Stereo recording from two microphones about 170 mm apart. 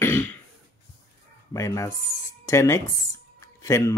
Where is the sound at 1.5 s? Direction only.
15° left (ahead or behind).